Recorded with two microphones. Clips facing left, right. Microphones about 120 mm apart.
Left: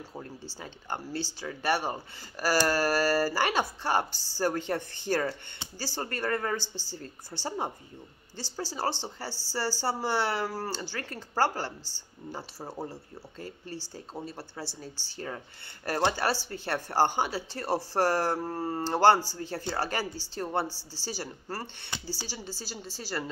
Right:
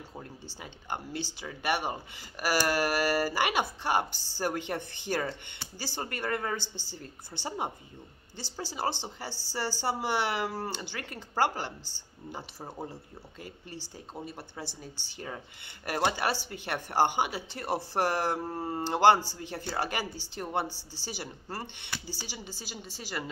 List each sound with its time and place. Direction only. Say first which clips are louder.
0.2 s speech: left 3 dB; 15° right (ahead or behind)
12.5 s speech: left 2 dB; 5° left (ahead or behind)
13.7 s a man's voice: left 3 dB; 20° right (ahead or behind)